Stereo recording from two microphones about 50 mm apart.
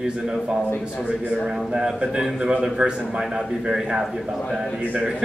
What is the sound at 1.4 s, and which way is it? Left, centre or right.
A man's voice, centre.